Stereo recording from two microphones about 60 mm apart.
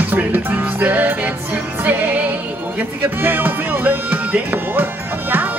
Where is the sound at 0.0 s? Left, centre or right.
Right.